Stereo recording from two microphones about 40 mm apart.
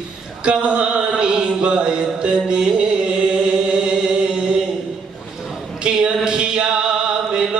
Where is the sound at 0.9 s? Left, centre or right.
Centre.